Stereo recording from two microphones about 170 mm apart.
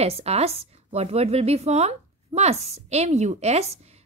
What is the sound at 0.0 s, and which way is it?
A woman's voice, 40° right (ahead or behind).